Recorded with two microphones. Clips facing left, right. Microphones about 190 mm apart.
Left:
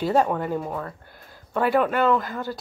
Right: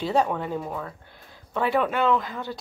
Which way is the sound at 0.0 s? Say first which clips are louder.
Left 2 dB; centre (ahead or behind).